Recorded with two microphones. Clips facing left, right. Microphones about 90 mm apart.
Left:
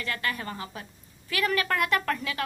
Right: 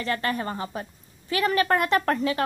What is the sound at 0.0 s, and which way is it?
Speech, 35° right (ahead or behind).